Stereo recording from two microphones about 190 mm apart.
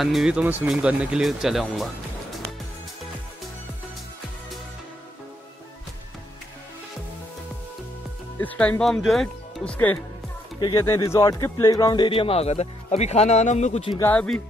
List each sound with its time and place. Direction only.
0.0 s speech: centre (ahead or behind)
8.4 s speech: 10° left (ahead or behind); by 13.9 s 35° left (ahead or behind)
13.9 s speech: 10° left (ahead or behind)